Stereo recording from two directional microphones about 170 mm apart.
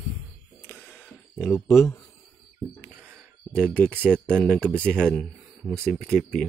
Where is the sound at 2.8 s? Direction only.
10° right (ahead or behind).